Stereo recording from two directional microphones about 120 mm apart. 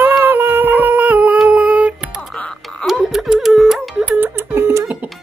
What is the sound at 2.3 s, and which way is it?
Music, 5° left (ahead or behind).